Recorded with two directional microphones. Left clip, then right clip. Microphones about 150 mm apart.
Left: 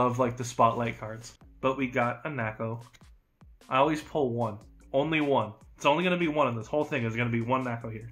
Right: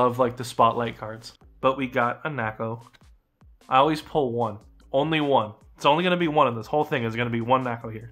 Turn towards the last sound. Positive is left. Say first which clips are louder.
# right 6 dB
turn(degrees=-35)  # may be behind; listen again after turning